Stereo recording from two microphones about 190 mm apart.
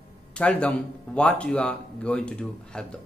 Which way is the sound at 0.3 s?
5° left (ahead or behind).